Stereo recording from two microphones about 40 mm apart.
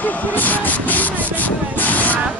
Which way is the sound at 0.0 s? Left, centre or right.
Left.